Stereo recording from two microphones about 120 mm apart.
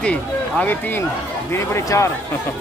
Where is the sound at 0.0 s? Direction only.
10° left (ahead or behind).